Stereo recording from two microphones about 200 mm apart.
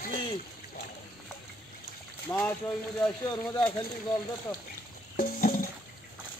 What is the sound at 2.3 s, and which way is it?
Speech, 10° left (ahead or behind).